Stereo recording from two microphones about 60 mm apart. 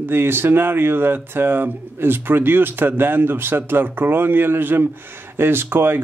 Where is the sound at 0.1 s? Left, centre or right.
Right.